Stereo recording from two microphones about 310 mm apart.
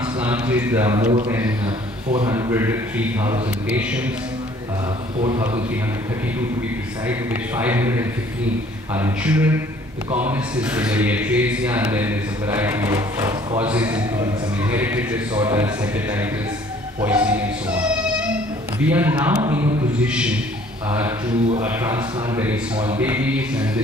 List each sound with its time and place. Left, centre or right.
0.2 s speech: centre
5.2 s speech: centre
7.1 s speech: centre
21.5 s speech: centre